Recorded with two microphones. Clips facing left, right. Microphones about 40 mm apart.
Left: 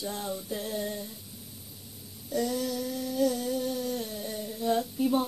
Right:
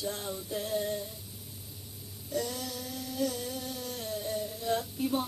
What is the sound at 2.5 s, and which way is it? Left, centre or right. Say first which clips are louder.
Music: left 8 dB; centre.